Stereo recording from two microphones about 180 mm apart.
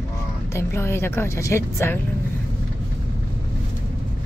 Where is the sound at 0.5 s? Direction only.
15° left (ahead or behind).